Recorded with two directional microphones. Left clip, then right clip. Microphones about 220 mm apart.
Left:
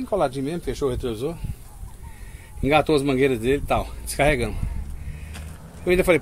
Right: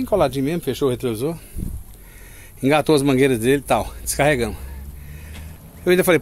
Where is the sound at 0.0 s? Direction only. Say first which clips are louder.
Right 4 dB; 40° right (ahead or behind).